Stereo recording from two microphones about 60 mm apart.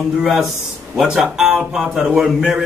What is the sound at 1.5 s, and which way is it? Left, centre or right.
A man's voice, centre.